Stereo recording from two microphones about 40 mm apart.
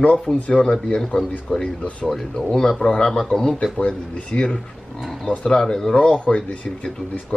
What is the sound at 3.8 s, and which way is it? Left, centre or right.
Speech, left.